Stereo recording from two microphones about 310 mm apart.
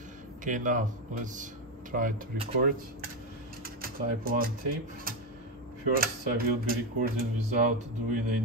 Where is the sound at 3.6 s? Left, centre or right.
Right.